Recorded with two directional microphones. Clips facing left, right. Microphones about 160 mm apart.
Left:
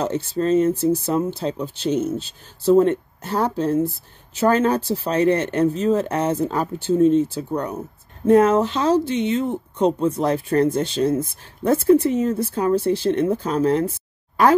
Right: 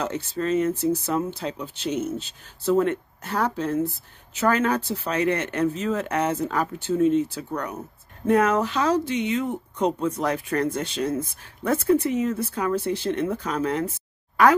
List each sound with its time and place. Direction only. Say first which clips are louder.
0.0 s speech: left 5 dB; 30° left (ahead or behind)